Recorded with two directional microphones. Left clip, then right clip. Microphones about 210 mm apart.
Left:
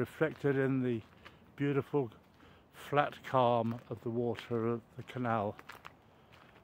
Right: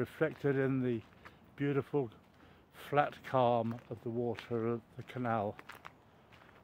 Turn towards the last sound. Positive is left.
turn(degrees=0)  # may be behind; listen again after turning